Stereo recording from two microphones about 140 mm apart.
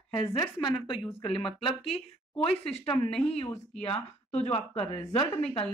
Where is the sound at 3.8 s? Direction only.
45° left (ahead or behind).